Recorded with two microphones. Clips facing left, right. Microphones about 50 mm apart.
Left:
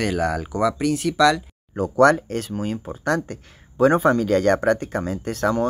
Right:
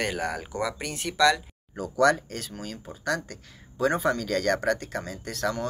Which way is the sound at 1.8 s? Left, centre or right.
Left.